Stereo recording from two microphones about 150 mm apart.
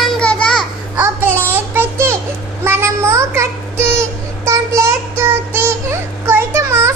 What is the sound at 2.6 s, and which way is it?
Child singing, 15° right (ahead or behind).